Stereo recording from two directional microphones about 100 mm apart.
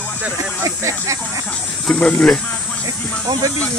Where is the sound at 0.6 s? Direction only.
35° right (ahead or behind).